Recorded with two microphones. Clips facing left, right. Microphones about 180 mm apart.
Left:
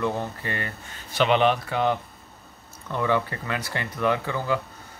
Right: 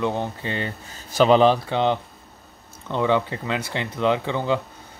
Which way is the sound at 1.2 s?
35° right (ahead or behind).